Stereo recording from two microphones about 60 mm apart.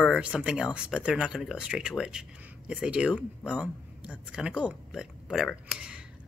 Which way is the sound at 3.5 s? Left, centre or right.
Right.